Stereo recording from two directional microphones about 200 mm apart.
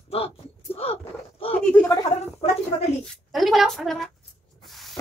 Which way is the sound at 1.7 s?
10° left (ahead or behind).